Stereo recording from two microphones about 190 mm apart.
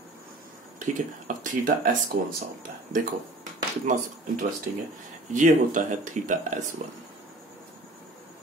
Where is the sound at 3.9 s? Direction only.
40° right (ahead or behind).